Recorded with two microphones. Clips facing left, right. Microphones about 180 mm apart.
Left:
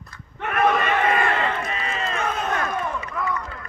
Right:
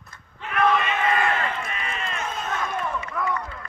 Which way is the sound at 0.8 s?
65° left (ahead or behind).